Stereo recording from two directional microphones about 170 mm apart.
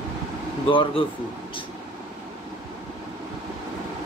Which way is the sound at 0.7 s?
30° left (ahead or behind).